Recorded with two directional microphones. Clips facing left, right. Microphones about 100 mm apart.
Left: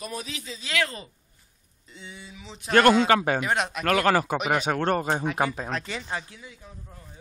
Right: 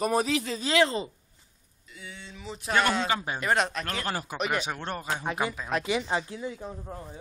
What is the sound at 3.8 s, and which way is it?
Speech, 85° left.